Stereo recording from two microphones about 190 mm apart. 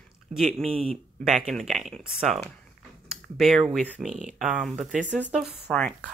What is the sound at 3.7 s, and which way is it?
Speech, centre (ahead or behind).